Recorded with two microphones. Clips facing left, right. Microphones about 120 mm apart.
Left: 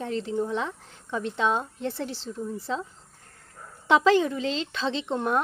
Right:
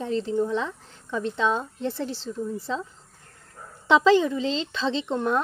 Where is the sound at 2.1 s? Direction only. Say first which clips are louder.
Right 3 dB; 15° left (ahead or behind).